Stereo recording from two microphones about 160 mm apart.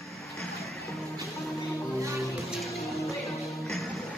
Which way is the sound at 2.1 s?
Centre (ahead or behind).